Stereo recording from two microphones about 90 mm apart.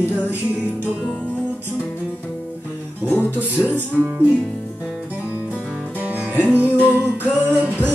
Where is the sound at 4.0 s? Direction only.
20° right (ahead or behind).